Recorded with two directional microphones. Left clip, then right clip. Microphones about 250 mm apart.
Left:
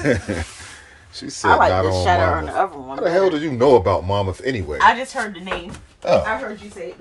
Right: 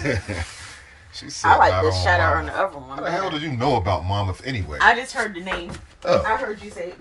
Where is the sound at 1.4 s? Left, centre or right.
Left.